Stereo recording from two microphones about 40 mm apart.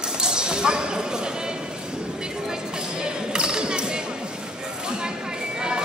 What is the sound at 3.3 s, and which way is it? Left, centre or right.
Basketball bounce, right.